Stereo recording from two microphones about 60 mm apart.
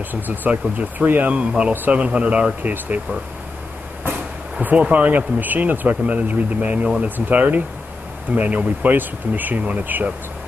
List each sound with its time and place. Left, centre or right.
0.5 s speech: right
2.9 s speech: right